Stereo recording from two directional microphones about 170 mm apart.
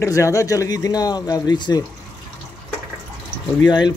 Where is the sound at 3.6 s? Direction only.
25° left (ahead or behind).